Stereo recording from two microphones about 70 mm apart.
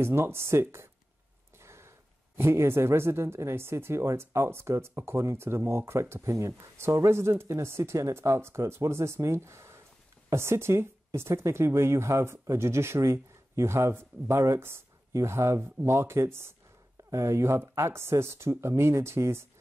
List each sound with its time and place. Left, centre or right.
0.0 s speech: right
1.6 s a sound: right
2.3 s speech: right